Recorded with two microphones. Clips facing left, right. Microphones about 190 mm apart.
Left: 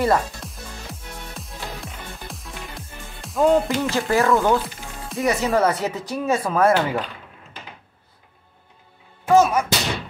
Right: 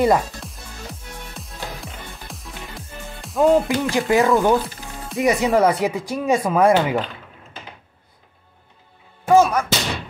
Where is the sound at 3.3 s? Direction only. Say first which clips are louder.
Right 2 dB; centre (ahead or behind).